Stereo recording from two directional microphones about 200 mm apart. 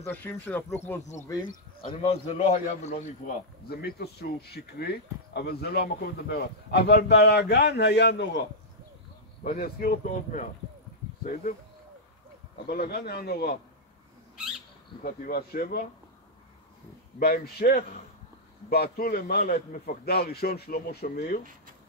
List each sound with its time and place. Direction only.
0.0 s speech: 10° left (ahead or behind)
1.8 s a man's voice: 30° left (ahead or behind); by 8.3 s 60° left (ahead or behind)
9.4 s a man's voice: 45° left (ahead or behind)
12.6 s a man's voice: 50° left (ahead or behind)
15.0 s a man's voice: 50° left (ahead or behind)
17.2 s a man's voice: 50° left (ahead or behind)